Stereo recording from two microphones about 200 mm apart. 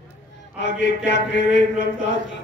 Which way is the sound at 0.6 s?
60° left (ahead or behind).